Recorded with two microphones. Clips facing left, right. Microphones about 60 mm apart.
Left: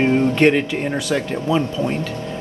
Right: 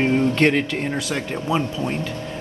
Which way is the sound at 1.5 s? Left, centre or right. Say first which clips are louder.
Left 3 dB; right.